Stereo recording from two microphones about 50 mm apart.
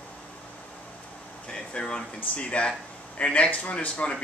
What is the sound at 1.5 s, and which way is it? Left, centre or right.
Air conditioning, centre.